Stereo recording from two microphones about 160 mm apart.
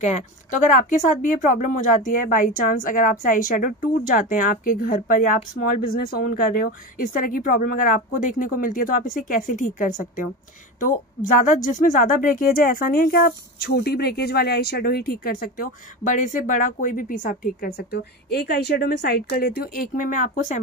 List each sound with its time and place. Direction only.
0.7 s a woman's voice: 55° left (ahead or behind)